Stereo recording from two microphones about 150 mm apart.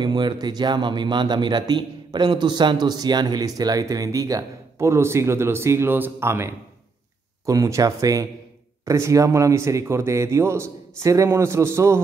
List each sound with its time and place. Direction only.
0.0 s speech: 30° right (ahead or behind)